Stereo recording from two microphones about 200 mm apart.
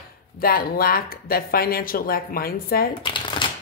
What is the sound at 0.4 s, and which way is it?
Speech, 50° left (ahead or behind).